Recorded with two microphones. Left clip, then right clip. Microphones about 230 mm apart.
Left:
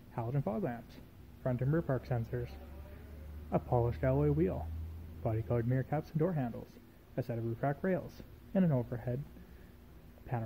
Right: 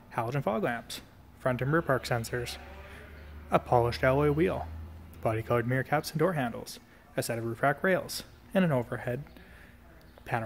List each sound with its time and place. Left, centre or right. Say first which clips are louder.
0.1 s a man's voice: right 8 dB; centre